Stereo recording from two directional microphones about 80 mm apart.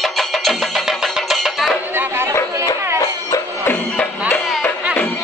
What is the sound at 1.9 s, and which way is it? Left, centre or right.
Chatter, right.